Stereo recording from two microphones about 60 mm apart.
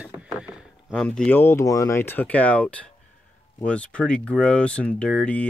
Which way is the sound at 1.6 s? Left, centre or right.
Left.